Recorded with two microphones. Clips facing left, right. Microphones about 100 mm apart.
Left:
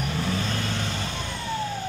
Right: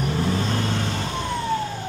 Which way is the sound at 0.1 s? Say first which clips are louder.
Right 5 dB; 30° right (ahead or behind).